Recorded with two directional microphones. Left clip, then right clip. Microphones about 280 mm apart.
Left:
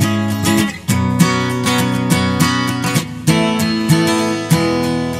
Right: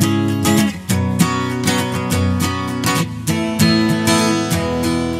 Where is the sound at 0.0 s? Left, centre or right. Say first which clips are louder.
Right 1 dB; centre.